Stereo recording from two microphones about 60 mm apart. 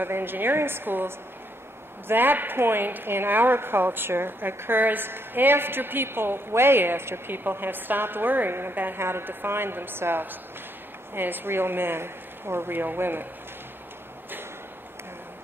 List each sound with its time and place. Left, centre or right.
0.0 s a woman's voice: right